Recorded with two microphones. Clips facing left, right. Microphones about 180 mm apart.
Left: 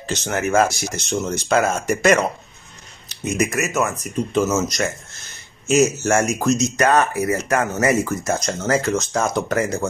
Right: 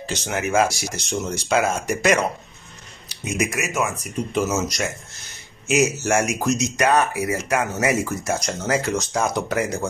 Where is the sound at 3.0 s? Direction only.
10° right (ahead or behind).